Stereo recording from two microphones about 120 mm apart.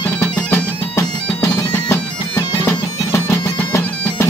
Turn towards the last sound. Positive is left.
turn(degrees=20)  # may be behind; listen again after turning